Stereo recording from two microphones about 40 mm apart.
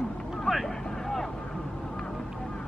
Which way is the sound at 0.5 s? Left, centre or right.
Left.